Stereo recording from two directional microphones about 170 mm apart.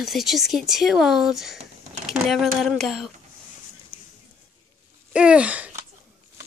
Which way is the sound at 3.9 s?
35° left (ahead or behind).